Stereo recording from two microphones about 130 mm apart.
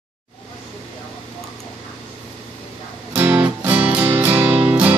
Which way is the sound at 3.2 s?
15° right (ahead or behind).